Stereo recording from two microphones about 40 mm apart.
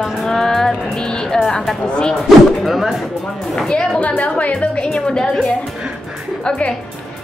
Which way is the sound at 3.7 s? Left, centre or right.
Left.